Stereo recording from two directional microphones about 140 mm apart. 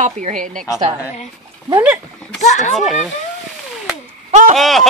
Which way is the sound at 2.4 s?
55° left (ahead or behind).